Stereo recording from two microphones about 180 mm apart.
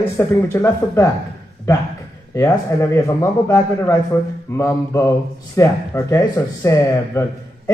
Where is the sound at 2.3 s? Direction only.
15° left (ahead or behind).